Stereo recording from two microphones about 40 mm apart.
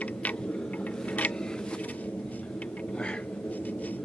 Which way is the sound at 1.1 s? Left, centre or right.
Left.